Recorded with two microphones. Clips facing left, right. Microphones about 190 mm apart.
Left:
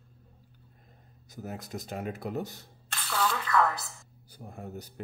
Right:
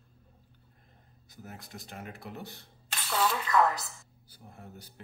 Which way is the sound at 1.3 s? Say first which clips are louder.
Left 8 dB; 45° left (ahead or behind).